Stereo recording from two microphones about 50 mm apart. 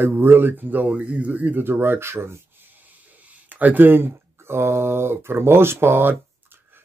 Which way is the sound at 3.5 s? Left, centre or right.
Right.